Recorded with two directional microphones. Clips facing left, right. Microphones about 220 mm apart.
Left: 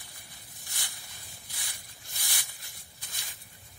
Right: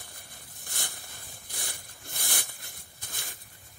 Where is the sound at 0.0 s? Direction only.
55° right (ahead or behind).